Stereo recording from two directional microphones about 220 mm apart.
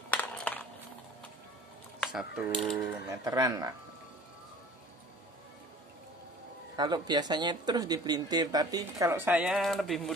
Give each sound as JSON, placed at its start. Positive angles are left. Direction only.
{"t": 0.1, "sound": "a sound", "side_deg": 5}
{"t": 2.0, "sound": "speech", "side_deg": -5}
{"t": 3.3, "sound": "speech", "side_deg": -15}
{"t": 6.8, "sound": "speech", "side_deg": -20}